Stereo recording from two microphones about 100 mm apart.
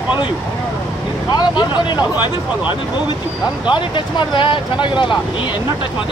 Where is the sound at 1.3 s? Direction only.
45° left (ahead or behind).